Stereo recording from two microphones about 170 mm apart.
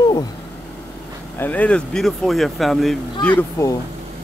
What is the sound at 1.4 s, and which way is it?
Speech, 10° left (ahead or behind).